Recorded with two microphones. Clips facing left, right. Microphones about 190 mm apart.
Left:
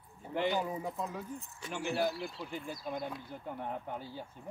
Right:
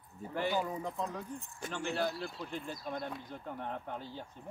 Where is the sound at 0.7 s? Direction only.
5° left (ahead or behind).